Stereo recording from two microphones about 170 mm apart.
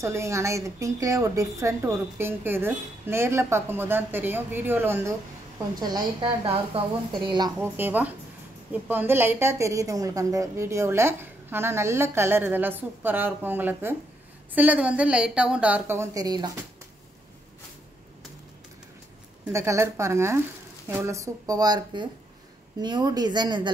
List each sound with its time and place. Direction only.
0.0 s a woman's voice: 15° right (ahead or behind)
5.8 s a woman's voice: 25° right (ahead or behind)
7.5 s a woman's voice: 10° right (ahead or behind)
19.5 s a woman's voice: 15° right (ahead or behind)